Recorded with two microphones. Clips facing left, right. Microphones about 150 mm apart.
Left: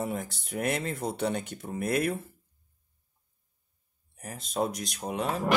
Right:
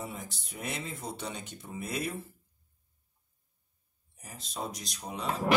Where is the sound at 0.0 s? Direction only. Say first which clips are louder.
Left 8 dB; 60° left (ahead or behind).